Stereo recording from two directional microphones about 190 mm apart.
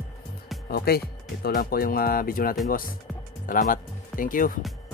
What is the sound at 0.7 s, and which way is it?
Speech, 55° left (ahead or behind).